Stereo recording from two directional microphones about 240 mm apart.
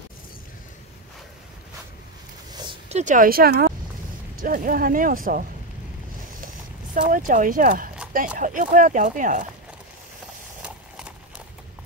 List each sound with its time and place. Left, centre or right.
2.5 s a sound: centre; by 3.7 s right
4.4 s speech: right
6.4 s speech: right
10.6 s clip-clop: centre